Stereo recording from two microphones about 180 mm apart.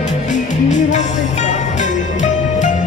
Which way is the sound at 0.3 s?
45° left (ahead or behind).